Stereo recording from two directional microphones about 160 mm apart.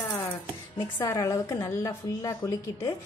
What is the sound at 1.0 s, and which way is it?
A woman's voice, 20° left (ahead or behind).